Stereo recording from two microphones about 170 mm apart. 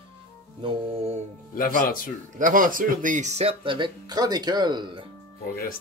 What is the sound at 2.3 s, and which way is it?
Speech, 50° right (ahead or behind).